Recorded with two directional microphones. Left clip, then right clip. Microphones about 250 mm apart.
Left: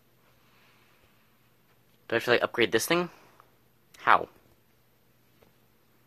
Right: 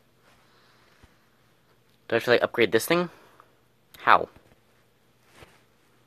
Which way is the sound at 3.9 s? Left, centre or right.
Centre.